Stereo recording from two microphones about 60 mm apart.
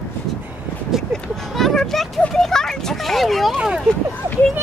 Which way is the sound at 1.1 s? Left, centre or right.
Centre.